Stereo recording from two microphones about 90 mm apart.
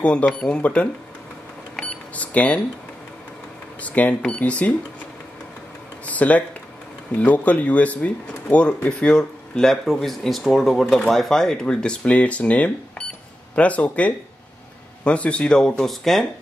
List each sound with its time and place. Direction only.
0.0 s speech: 15° left (ahead or behind)
1.8 s cash register: 15° left (ahead or behind)
3.8 s speech: 15° left (ahead or behind)
6.0 s speech: 15° left (ahead or behind)